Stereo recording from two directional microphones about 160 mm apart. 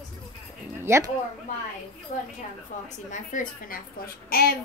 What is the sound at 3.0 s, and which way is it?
Speech, 50° left (ahead or behind).